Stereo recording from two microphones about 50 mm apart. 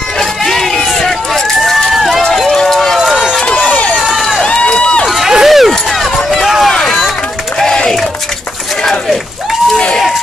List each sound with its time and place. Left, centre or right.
0.2 s run: centre
2.3 s run: centre
3.4 s run: left
4.1 s run: centre
4.4 s run: centre
5.0 s run: centre
7.6 s crowd: centre